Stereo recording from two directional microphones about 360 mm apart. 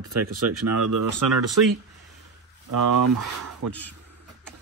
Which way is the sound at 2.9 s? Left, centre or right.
Right.